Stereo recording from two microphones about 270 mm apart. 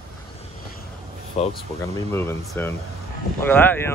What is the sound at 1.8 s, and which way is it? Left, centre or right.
Speech, centre.